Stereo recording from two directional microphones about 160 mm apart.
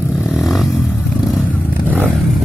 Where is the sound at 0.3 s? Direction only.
Centre (ahead or behind).